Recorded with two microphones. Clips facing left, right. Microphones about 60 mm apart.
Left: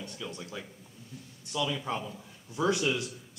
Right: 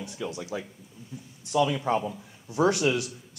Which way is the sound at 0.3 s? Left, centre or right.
Right.